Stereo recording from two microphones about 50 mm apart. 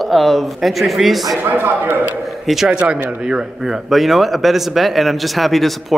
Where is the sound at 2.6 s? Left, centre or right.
Right.